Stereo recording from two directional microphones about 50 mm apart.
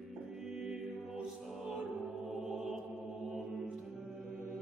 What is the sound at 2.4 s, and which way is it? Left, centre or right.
Mantra, centre.